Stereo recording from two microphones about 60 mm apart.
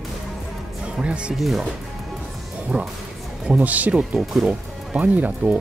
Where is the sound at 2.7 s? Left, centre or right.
Right.